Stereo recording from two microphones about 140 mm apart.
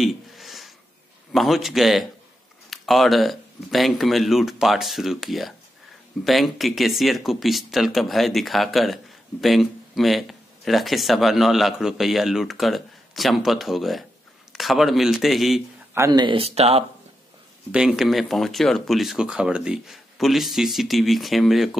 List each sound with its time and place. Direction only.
0.0 s a sound: centre (ahead or behind)
1.3 s speech: centre (ahead or behind)
16.1 s speech: 35° right (ahead or behind)
17.6 s speech: 5° right (ahead or behind)